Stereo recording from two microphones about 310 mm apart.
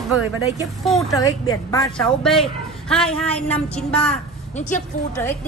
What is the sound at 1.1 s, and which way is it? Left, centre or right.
A woman's voice, centre.